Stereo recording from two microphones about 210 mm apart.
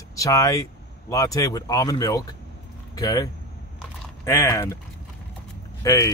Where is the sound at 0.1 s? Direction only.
15° left (ahead or behind).